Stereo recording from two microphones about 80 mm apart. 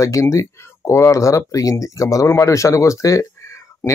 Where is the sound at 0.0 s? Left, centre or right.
Left.